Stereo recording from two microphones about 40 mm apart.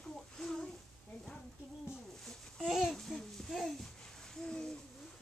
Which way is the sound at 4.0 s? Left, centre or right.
Centre.